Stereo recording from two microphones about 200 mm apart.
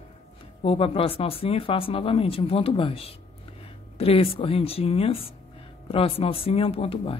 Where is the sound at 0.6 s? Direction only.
30° left (ahead or behind).